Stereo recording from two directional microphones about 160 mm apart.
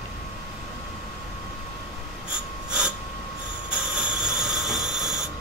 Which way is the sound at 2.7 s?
5° right (ahead or behind).